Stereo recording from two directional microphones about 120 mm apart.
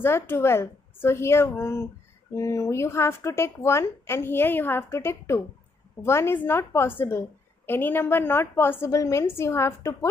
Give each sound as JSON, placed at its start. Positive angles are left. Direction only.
{"t": 0.0, "sound": "a woman's voice", "side_deg": 20}